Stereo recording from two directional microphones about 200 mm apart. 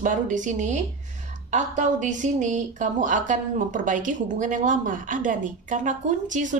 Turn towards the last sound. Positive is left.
turn(degrees=-40)  # may be behind; listen again after turning